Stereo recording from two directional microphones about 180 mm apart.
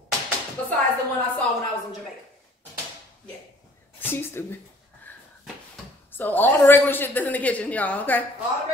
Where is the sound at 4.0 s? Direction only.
10° left (ahead or behind).